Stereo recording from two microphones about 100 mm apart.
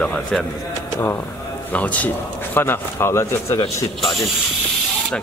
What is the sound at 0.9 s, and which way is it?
Speech, 25° left (ahead or behind).